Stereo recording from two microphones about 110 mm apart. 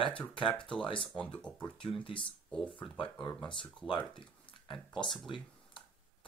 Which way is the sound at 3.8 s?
50° left (ahead or behind).